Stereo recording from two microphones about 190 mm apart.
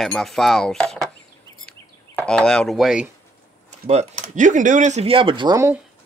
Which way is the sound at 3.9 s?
35° right (ahead or behind).